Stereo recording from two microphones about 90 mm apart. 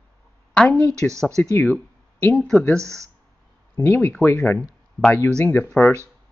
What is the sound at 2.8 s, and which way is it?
Speech, 35° right (ahead or behind).